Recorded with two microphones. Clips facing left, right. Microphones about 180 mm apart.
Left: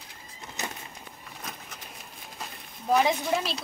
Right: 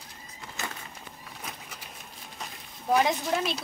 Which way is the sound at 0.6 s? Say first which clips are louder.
Left 1 dB; 20° left (ahead or behind).